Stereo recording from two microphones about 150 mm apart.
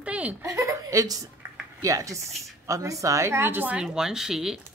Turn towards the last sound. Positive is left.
turn(degrees=-5)  # may be behind; listen again after turning